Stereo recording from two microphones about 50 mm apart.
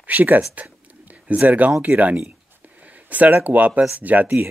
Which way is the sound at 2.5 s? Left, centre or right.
Right.